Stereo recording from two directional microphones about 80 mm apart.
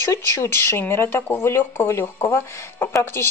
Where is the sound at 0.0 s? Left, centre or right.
Left.